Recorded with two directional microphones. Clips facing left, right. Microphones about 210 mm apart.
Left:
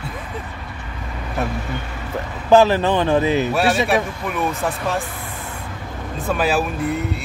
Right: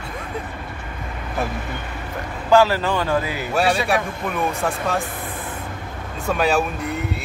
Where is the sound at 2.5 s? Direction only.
20° left (ahead or behind).